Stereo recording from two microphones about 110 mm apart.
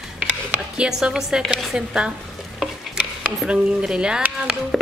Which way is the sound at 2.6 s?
5° right (ahead or behind).